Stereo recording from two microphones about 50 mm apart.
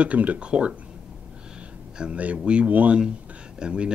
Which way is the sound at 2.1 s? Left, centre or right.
Right.